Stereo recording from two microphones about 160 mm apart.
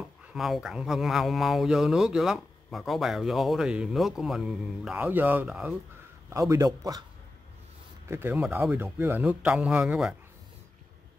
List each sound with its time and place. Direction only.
0.3 s speech: centre (ahead or behind)
6.3 s a man's voice: 20° right (ahead or behind)
8.1 s speech: 15° right (ahead or behind)